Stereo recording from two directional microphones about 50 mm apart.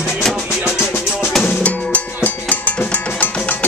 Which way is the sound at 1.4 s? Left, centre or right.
Left.